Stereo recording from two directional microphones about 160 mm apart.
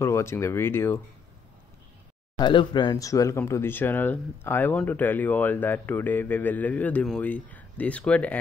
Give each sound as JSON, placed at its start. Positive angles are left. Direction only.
{"t": 0.0, "sound": "speech", "side_deg": 15}
{"t": 2.3, "sound": "speech", "side_deg": 30}